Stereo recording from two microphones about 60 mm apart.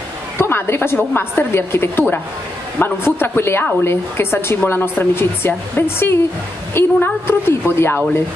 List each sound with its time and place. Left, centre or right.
0.4 s a woman's voice: left